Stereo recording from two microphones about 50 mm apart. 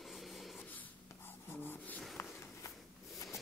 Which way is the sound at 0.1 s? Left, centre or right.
Centre.